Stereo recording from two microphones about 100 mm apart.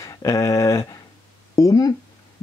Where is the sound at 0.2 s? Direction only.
30° left (ahead or behind).